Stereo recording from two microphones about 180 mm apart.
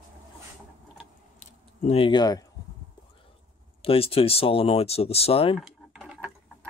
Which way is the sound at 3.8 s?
30° left (ahead or behind).